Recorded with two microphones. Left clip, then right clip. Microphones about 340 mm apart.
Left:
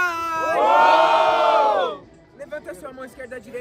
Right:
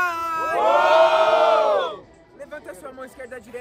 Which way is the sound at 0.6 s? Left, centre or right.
Left.